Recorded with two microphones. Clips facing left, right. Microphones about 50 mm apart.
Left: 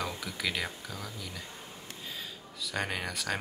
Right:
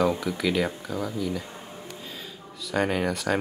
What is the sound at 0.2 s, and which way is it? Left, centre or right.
Speech, centre.